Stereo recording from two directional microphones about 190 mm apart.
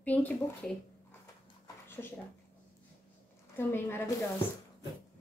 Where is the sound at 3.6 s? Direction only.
10° left (ahead or behind).